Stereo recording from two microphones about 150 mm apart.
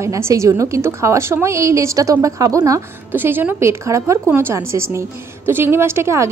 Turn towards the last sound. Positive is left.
turn(degrees=-15)  # may be behind; listen again after turning